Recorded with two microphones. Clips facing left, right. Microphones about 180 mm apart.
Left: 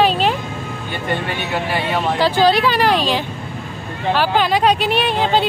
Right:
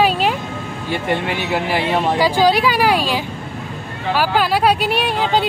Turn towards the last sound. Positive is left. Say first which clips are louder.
# left 1 dB
turn(degrees=-10)  # may be behind; listen again after turning